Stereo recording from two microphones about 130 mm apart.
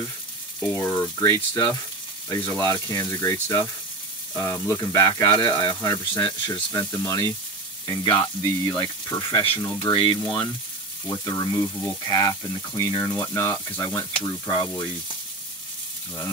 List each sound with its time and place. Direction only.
0.6 s speech: 15° left (ahead or behind)
2.7 s speech: 30° left (ahead or behind)
5.8 s speech: 25° left (ahead or behind)
6.5 s speech: 35° left (ahead or behind)
6.9 s speech: 25° left (ahead or behind)
9.8 s speech: 35° left (ahead or behind)